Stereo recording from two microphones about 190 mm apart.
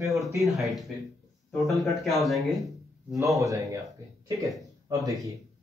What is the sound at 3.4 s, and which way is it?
Speech, 15° right (ahead or behind).